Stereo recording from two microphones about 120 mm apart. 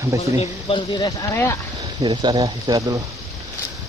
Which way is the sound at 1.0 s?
30° left (ahead or behind).